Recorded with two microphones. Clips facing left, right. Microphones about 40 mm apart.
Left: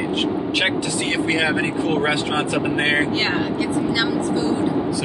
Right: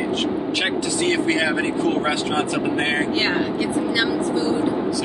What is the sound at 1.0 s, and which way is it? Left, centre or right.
Speech, left.